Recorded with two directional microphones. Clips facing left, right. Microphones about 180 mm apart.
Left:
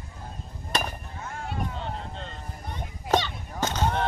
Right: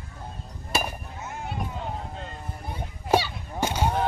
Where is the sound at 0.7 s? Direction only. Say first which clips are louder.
Right 1 dB; 10° right (ahead or behind).